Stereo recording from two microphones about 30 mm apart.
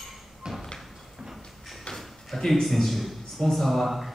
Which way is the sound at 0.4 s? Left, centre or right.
Right.